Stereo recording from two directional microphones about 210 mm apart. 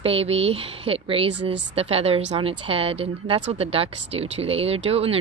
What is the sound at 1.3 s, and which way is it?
Speech, 55° right (ahead or behind).